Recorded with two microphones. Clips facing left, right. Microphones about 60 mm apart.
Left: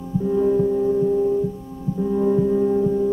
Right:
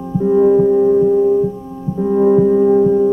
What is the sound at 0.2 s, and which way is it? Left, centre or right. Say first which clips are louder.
Music: right 8 dB; right.